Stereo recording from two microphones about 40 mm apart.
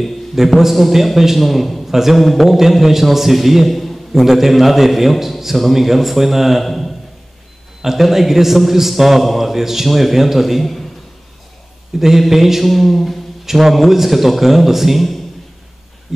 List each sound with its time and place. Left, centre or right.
0.6 s a man's voice: centre
12.0 s a man's voice: centre